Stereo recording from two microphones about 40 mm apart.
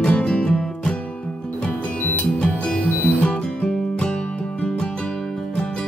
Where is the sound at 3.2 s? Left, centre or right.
Left.